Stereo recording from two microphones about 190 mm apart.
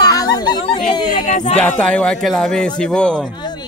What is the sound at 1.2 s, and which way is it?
Speech, 40° left (ahead or behind).